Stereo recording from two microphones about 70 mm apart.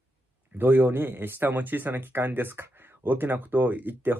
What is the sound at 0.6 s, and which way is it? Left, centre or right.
Speech, right.